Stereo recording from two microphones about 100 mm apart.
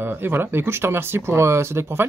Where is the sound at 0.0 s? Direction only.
20° right (ahead or behind).